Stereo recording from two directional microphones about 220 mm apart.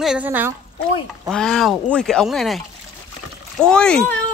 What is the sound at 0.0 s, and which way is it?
Speech, 5° right (ahead or behind).